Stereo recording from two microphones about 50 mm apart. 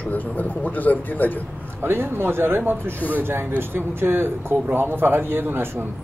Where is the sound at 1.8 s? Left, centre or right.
Right.